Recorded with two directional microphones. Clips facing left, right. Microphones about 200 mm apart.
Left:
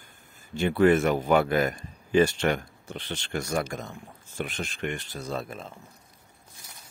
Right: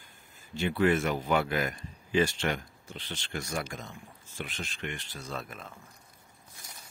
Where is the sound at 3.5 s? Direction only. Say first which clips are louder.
Left 8 dB; 45° left (ahead or behind); by 5.7 s 30° left (ahead or behind).